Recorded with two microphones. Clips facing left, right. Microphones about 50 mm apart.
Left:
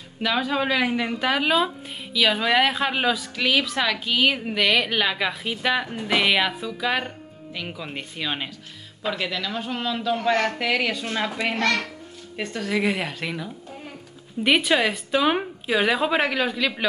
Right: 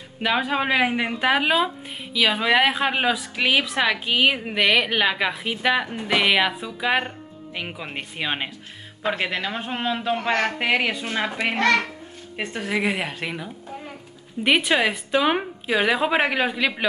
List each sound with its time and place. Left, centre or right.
0.2 s a man's voice: right